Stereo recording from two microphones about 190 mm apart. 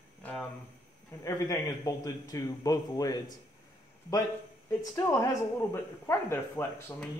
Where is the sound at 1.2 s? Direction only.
15° left (ahead or behind).